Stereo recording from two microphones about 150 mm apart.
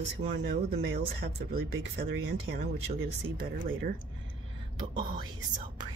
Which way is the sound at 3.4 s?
75° right (ahead or behind).